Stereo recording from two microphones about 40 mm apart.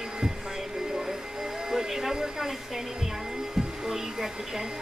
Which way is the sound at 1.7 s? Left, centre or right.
Centre.